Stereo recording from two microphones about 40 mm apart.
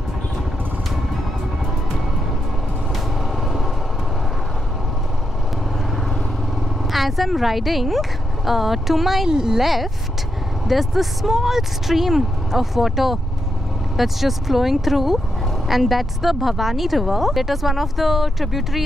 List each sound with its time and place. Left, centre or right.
6.9 s speech: centre
9.3 s speech: centre
9.6 s speech: centre